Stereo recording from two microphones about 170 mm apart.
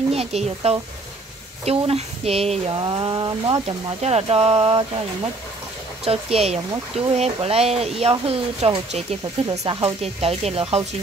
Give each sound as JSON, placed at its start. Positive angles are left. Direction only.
{"t": 0.1, "sound": "speech", "side_deg": -35}
{"t": 4.0, "sound": "speech", "side_deg": -35}